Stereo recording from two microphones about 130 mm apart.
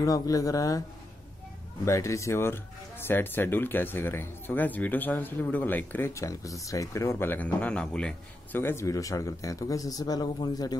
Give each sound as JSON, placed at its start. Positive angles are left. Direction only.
{"t": 0.0, "sound": "speech", "side_deg": 25}
{"t": 1.9, "sound": "speech", "side_deg": 25}
{"t": 8.5, "sound": "speech", "side_deg": 20}